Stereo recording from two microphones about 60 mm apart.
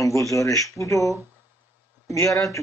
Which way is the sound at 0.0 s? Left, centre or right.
Left.